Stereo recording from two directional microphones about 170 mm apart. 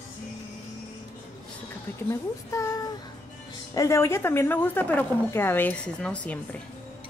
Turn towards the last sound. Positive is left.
turn(degrees=10)  # may be behind; listen again after turning